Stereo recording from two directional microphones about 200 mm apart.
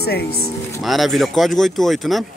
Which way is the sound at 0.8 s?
Centre (ahead or behind).